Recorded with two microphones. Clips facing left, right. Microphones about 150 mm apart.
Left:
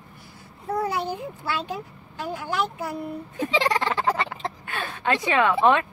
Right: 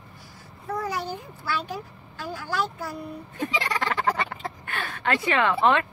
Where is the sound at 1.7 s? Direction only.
20° left (ahead or behind).